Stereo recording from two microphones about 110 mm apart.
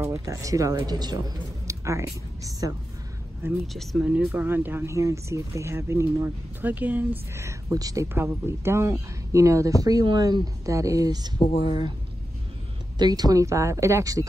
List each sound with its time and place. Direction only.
0.0 s a man's voice: 30° right (ahead or behind)
3.6 s speech: centre (ahead or behind)
4.3 s speech: 15° right (ahead or behind)
8.1 s a man's voice: 20° right (ahead or behind)
11.3 s speech: 65° left (ahead or behind)
13.0 s speech: 35° right (ahead or behind)